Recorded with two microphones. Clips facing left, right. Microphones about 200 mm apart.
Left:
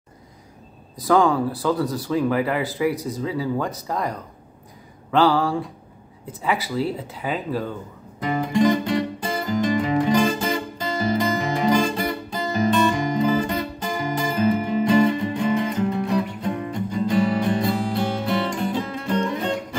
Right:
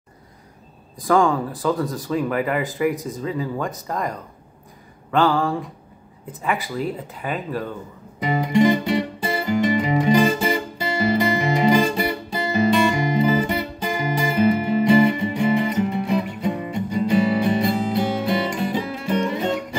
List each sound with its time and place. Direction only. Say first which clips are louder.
1.0 s speech: even; 5° left (ahead or behind)
7.2 s speech: left 1 dB; centre (ahead or behind)
8.2 s music: right 2 dB; 15° right (ahead or behind)